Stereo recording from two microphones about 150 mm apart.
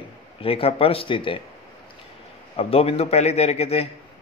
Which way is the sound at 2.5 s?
40° left (ahead or behind).